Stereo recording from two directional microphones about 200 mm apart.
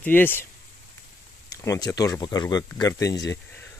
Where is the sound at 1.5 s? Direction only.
15° left (ahead or behind).